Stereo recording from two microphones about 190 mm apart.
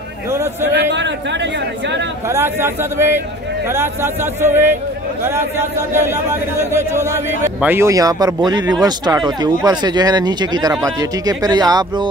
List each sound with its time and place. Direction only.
0.3 s a man's voice: 15° right (ahead or behind)
0.7 s speech: 65° right (ahead or behind)
2.2 s a man's voice: 15° right (ahead or behind)